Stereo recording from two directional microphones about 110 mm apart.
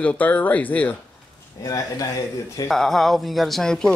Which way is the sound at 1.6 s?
30° left (ahead or behind).